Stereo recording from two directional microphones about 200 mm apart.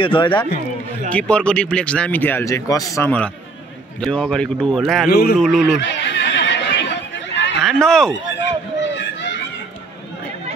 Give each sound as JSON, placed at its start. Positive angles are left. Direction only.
{"t": 0.0, "sound": "a man's voice", "side_deg": 25}
{"t": 1.1, "sound": "speech", "side_deg": 5}
{"t": 5.1, "sound": "a man's voice", "side_deg": 50}
{"t": 5.4, "sound": "speech", "side_deg": 0}
{"t": 5.8, "sound": "neigh", "side_deg": 65}
{"t": 7.6, "sound": "speech", "side_deg": 5}
{"t": 8.4, "sound": "children playing", "side_deg": 65}